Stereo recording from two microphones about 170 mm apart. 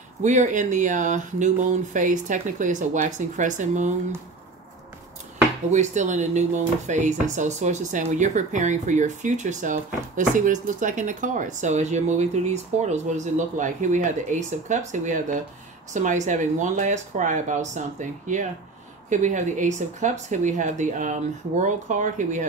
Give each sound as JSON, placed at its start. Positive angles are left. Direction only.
{"t": 0.2, "sound": "speech", "side_deg": -45}
{"t": 5.7, "sound": "speech", "side_deg": -45}